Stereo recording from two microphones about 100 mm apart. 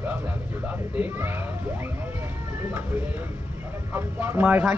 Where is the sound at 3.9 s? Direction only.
20° right (ahead or behind).